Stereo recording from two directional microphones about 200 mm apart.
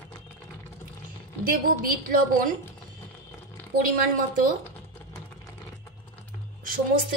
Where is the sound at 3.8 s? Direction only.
45° right (ahead or behind).